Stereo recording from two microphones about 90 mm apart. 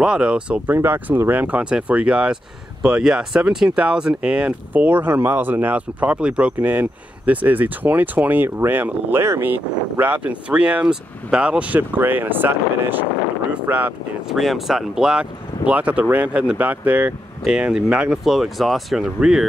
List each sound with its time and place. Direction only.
0.0 s speech: 10° right (ahead or behind)
0.7 s speech: 20° right (ahead or behind)
14.3 s speech: centre (ahead or behind)
18.2 s speech: 5° right (ahead or behind)